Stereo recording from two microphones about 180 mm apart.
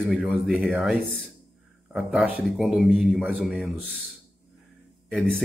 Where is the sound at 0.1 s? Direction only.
Centre (ahead or behind).